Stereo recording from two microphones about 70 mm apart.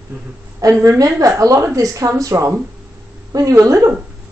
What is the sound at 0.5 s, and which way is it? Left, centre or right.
A woman's voice, right.